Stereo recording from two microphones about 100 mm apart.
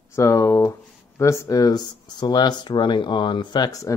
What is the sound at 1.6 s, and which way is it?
Speech, 45° left (ahead or behind).